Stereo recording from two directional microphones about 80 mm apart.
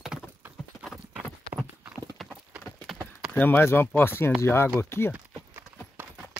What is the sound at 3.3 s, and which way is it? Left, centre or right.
Speech, centre.